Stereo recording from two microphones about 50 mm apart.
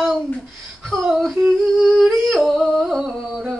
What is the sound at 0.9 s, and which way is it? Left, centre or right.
Speech, centre.